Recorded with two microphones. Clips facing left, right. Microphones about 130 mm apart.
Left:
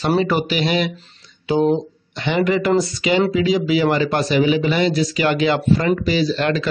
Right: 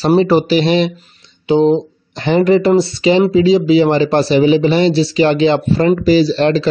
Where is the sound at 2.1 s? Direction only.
35° right (ahead or behind).